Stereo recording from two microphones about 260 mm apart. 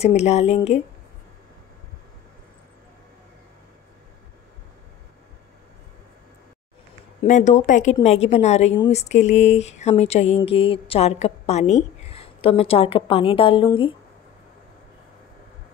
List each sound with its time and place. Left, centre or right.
0.0 s speech: left
7.2 s speech: left